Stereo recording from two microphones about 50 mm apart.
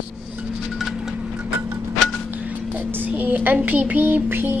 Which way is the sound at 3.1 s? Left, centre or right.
Right.